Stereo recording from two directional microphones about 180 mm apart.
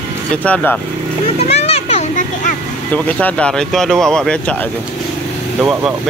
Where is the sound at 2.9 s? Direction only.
10° left (ahead or behind).